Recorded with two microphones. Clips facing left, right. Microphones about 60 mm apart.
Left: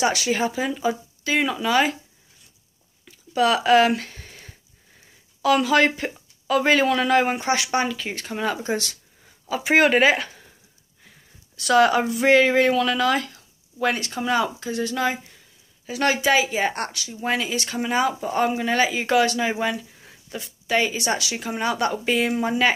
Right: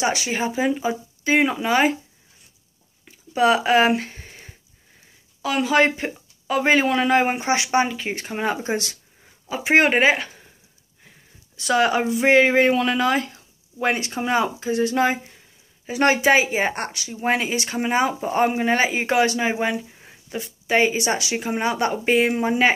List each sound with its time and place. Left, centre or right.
0.0 s speech: centre; by 2.0 s right
3.1 s a sound: centre
5.4 s speech: centre
9.2 s a sound: centre
9.8 s speech: centre
11.5 s speech: centre